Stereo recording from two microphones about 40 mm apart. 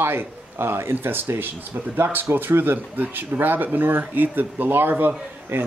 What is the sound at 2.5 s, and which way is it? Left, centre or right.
Speech, right.